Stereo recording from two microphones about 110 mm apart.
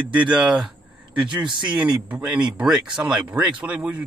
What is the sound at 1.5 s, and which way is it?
Speech, 45° right (ahead or behind).